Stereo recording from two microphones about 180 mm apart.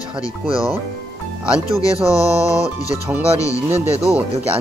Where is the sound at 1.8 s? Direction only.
20° left (ahead or behind).